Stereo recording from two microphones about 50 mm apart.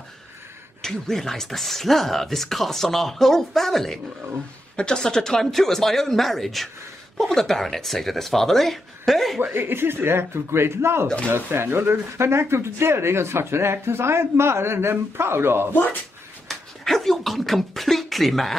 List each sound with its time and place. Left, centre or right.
0.8 s speech: centre
9.4 s speech: right
16.4 s speech: centre